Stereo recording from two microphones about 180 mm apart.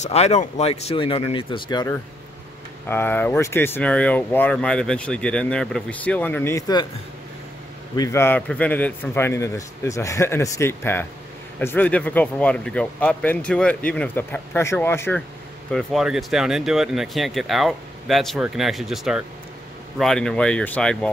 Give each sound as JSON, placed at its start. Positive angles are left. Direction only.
{"t": 0.0, "sound": "speech", "side_deg": 35}
{"t": 2.9, "sound": "speech", "side_deg": 10}
{"t": 7.9, "sound": "speech", "side_deg": 20}
{"t": 15.7, "sound": "speech", "side_deg": 0}